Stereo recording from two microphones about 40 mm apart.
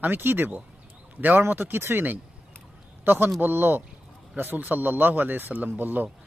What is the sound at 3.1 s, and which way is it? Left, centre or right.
Speech, right.